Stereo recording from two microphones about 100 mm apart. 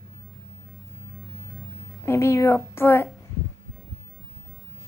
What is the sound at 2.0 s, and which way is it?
A woman's voice, 30° left (ahead or behind).